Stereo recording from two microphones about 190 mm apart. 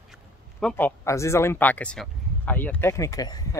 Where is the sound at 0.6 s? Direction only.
5° left (ahead or behind).